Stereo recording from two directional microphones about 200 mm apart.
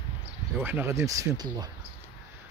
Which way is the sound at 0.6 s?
10° right (ahead or behind).